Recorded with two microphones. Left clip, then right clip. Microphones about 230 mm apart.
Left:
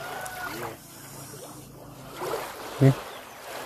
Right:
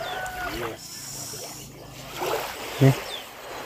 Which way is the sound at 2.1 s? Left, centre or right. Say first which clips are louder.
Right 4 dB; right.